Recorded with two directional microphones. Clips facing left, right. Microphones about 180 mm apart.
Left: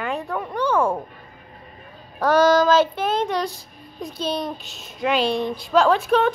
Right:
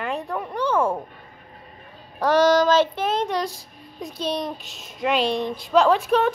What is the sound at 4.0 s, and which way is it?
A woman's voice, centre (ahead or behind).